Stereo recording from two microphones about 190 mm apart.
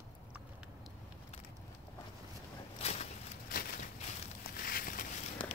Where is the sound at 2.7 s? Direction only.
35° left (ahead or behind).